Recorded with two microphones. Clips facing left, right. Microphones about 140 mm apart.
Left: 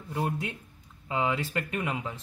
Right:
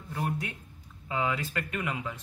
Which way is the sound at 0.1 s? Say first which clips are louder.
Left 2 dB; 25° left (ahead or behind).